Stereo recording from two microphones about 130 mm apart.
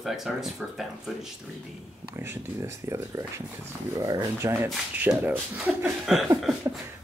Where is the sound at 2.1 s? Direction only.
20° right (ahead or behind).